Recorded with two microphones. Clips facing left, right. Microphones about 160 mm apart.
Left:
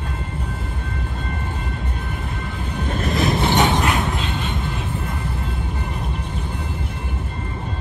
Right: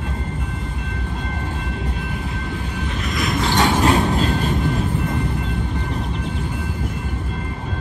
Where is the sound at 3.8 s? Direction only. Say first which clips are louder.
Right 5 dB; 35° right (ahead or behind).